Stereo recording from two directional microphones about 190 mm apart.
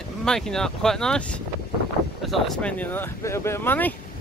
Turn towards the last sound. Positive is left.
turn(degrees=10)  # may be behind; listen again after turning